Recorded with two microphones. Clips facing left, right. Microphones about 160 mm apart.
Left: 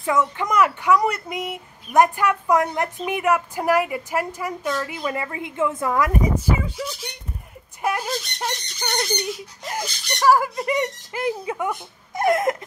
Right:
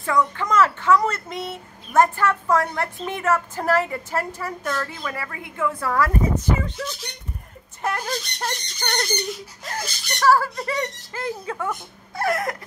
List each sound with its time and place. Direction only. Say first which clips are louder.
0.0 s speech: left 1 dB; 20° left (ahead or behind); by 9.2 s centre (ahead or behind)
9.7 s speech: left 2 dB; 15° left (ahead or behind)
12.1 s a sound: left 5 dB; 20° left (ahead or behind)